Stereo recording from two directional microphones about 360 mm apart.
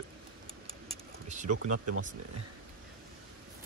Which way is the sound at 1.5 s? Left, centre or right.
Right.